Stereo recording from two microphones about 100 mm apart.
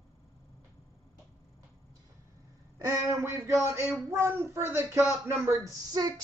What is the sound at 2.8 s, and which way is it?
A woman's voice, 30° right (ahead or behind).